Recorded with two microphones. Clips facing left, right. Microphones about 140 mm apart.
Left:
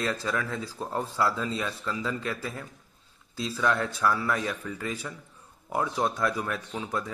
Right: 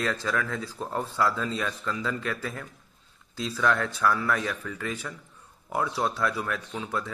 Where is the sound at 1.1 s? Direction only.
35° left (ahead or behind).